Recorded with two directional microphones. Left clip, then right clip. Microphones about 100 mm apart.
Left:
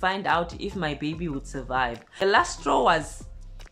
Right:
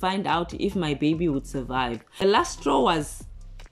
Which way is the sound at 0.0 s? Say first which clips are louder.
Left 1 dB; 35° right (ahead or behind).